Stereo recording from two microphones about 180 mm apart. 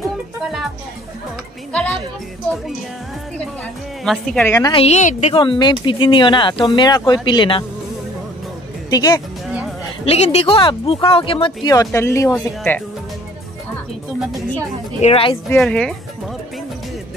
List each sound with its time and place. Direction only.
0.4 s music: centre (ahead or behind)
4.0 s speech: centre (ahead or behind)
4.5 s speech: 20° left (ahead or behind)
4.7 s speech: 40° left (ahead or behind)
5.4 s speech: 25° left (ahead or behind)
8.9 s speech: 20° left (ahead or behind)
9.5 s music: 5° right (ahead or behind)
10.0 s speech: 35° left (ahead or behind)
11.7 s speech: 15° left (ahead or behind)
15.0 s speech: 35° left (ahead or behind)
15.5 s speech: 5° left (ahead or behind)